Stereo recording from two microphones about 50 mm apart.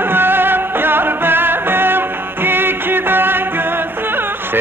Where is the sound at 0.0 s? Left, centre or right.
Right.